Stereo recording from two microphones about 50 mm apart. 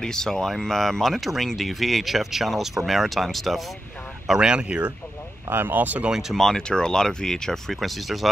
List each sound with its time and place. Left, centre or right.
0.0 s speech: centre
4.3 s speech: centre
5.5 s speech: right
5.8 s speech: right
6.3 s speech: centre